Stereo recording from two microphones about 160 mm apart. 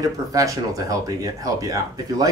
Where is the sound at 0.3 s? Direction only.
20° right (ahead or behind).